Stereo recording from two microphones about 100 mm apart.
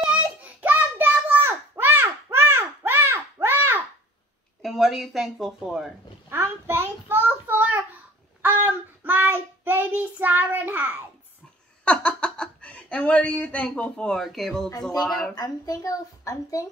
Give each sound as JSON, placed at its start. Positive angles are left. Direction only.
{"t": 0.0, "sound": "a sound", "side_deg": -10}
{"t": 4.6, "sound": "speech", "side_deg": 0}
{"t": 6.3, "sound": "child singing", "side_deg": -25}
{"t": 11.8, "sound": "speech", "side_deg": 10}
{"t": 15.3, "sound": "a woman's voice", "side_deg": 40}